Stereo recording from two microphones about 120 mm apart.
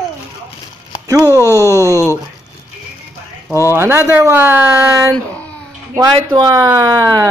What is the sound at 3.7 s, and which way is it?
Speech, 20° right (ahead or behind).